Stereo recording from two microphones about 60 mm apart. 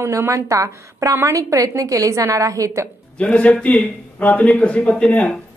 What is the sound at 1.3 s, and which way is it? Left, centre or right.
A woman's voice, right.